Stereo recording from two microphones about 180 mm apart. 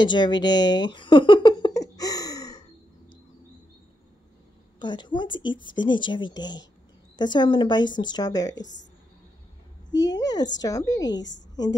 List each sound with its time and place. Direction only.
0.0 s a sound: 25° left (ahead or behind)
4.7 s a woman's voice: 25° left (ahead or behind)
5.4 s speech: 90° left
5.7 s speech: 25° left (ahead or behind)
8.5 s speech: 90° left
9.9 s speech: 20° left (ahead or behind)